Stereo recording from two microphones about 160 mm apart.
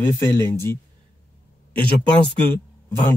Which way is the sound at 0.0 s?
15° left (ahead or behind).